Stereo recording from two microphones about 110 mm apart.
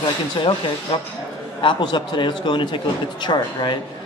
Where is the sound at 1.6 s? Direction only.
45° left (ahead or behind).